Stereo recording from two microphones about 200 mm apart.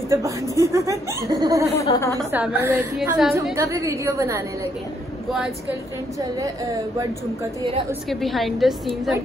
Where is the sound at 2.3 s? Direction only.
10° right (ahead or behind).